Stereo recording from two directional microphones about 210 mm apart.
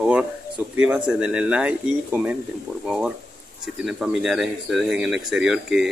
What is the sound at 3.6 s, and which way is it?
Speech, centre (ahead or behind).